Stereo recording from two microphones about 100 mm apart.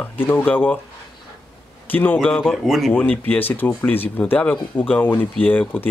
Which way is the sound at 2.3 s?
5° left (ahead or behind).